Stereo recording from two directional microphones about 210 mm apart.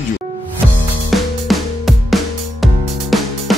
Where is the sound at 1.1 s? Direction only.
Centre (ahead or behind).